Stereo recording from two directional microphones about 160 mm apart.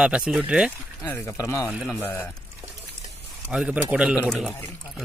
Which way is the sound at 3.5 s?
5° right (ahead or behind).